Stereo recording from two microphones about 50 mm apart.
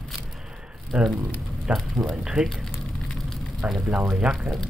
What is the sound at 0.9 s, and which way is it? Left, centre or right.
Speech, centre.